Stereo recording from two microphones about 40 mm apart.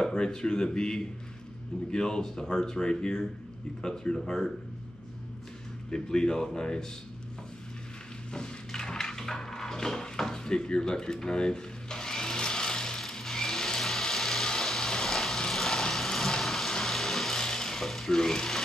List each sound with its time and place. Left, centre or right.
0.0 s speech: centre
5.9 s speech: centre
8.3 s a sound: centre